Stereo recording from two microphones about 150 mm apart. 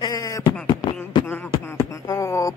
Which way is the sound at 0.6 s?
30° left (ahead or behind).